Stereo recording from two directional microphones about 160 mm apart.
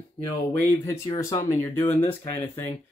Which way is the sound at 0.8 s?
20° left (ahead or behind).